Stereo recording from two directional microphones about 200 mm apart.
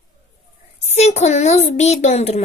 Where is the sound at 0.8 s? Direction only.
35° left (ahead or behind).